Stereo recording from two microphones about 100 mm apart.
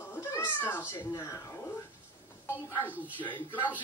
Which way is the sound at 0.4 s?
20° left (ahead or behind).